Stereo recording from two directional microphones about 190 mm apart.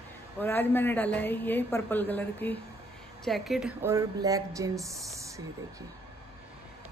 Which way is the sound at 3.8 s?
15° right (ahead or behind).